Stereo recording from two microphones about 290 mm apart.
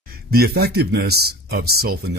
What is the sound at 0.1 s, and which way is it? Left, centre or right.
Speech, right.